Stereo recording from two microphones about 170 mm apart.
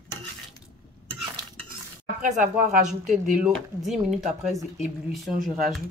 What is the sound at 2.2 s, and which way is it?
Speech, 50° right (ahead or behind).